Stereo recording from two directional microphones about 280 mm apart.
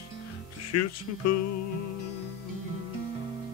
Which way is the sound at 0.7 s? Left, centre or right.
Left.